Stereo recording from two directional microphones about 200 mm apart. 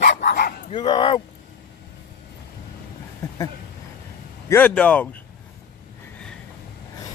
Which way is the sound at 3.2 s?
15° left (ahead or behind).